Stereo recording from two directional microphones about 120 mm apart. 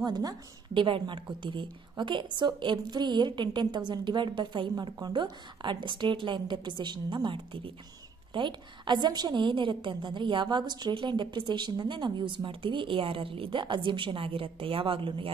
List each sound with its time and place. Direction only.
0.0 s a woman's voice: 35° right (ahead or behind)